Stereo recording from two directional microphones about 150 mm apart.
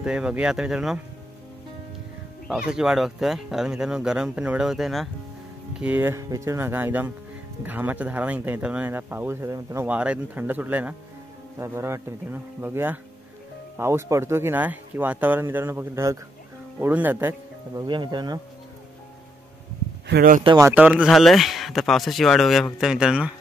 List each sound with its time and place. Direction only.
0.0 s speech: 5° right (ahead or behind)
2.4 s speech: 5° right (ahead or behind)
17.8 s speech: 30° right (ahead or behind)
20.1 s speech: 75° right (ahead or behind)
20.7 s speech: 10° right (ahead or behind)